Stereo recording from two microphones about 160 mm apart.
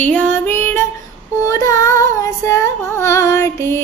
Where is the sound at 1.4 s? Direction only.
20° left (ahead or behind).